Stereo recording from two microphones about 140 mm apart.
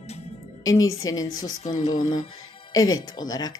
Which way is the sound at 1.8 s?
55° left (ahead or behind).